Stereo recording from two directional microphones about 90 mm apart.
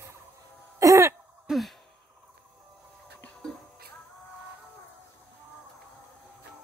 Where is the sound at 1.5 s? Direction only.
5° right (ahead or behind).